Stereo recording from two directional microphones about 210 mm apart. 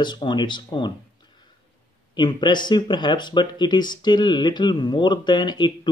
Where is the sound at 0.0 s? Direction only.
20° left (ahead or behind).